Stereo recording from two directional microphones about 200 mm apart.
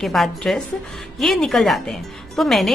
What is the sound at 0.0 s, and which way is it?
A woman's voice, centre (ahead or behind).